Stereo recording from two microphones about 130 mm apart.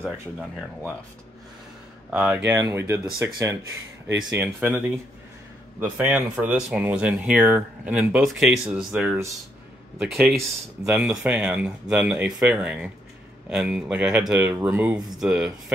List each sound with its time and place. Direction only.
0.4 s speech: 5° right (ahead or behind)
2.0 s speech: 10° right (ahead or behind)
2.5 s speech: 20° right (ahead or behind)
3.3 s speech: 30° right (ahead or behind)
4.2 s speech: 10° right (ahead or behind)